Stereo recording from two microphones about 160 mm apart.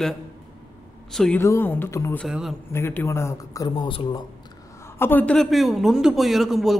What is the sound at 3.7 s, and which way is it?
Speech, 30° left (ahead or behind).